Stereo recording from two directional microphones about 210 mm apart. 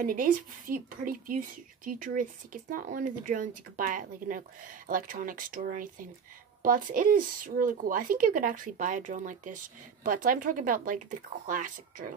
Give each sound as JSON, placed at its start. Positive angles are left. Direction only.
{"t": 0.0, "sound": "speech", "side_deg": -40}